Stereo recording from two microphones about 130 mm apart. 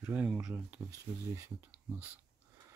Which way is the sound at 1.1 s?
60° right (ahead or behind).